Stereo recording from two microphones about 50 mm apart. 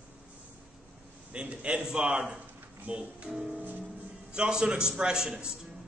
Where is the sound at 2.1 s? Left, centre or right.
Right.